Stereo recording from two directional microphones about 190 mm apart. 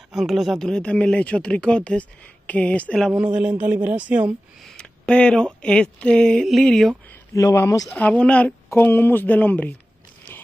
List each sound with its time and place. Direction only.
0.1 s speech: centre (ahead or behind)
3.6 s speech: 10° right (ahead or behind)
4.7 s speech: 5° left (ahead or behind)
7.3 s a woman's voice: 15° left (ahead or behind)